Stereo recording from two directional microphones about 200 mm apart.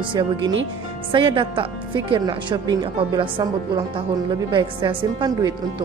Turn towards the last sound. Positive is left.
turn(degrees=-20)  # may be behind; listen again after turning